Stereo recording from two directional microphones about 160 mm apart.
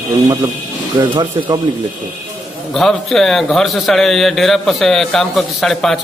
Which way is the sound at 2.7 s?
Centre (ahead or behind).